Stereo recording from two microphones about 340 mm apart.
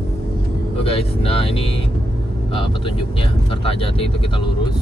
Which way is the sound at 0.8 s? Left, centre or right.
Centre.